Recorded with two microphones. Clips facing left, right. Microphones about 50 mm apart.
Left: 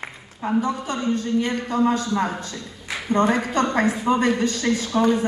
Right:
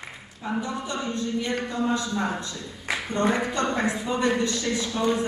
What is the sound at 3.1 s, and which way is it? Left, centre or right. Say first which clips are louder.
A woman's voice: left 5 dB; left.